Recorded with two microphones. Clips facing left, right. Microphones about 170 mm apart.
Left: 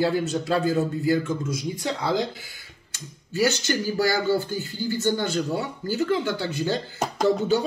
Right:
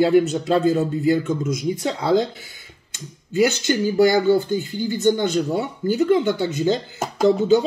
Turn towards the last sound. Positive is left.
turn(degrees=0)  # may be behind; listen again after turning